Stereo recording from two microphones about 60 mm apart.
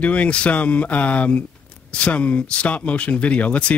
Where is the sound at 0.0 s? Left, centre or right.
Left.